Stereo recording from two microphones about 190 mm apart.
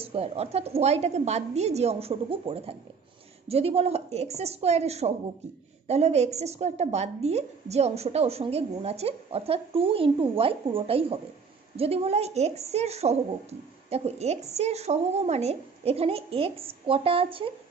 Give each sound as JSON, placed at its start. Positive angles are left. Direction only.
{"t": 0.0, "sound": "a woman's voice", "side_deg": -30}